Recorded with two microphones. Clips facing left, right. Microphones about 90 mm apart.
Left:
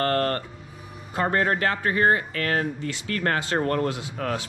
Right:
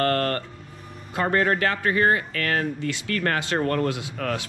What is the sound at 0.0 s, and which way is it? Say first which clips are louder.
Music: right 1 dB; 30° left (ahead or behind).